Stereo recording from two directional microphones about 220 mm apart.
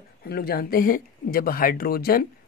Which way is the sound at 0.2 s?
45° left (ahead or behind).